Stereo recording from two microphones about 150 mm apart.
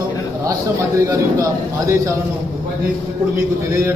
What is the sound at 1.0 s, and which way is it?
A man's voice, 20° right (ahead or behind).